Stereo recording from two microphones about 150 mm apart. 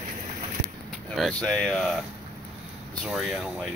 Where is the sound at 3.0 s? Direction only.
Centre (ahead or behind).